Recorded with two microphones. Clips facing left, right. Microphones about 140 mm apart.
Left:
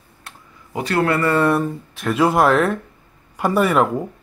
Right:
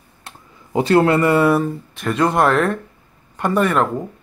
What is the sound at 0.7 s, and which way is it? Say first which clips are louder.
Speech: right 5 dB; 25° right (ahead or behind).